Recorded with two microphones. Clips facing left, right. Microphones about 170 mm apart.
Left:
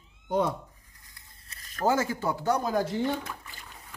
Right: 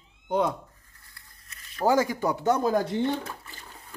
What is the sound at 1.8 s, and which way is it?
Chopping, 15° right (ahead or behind).